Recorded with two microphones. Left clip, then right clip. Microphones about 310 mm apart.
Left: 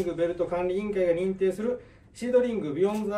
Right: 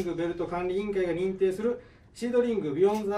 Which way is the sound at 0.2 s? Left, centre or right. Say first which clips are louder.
Left 6 dB; centre.